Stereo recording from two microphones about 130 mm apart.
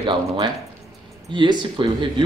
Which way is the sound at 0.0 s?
40° right (ahead or behind).